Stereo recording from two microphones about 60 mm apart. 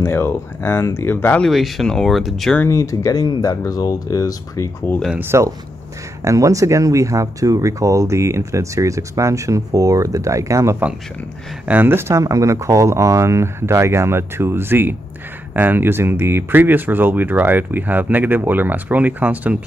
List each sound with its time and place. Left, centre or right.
0.0 s speech: left
1.5 s speech: centre
2.7 s speech: left
4.9 s speech: left
5.2 s speech: right
6.2 s speech: right
11.6 s speech: right
12.1 s speech: right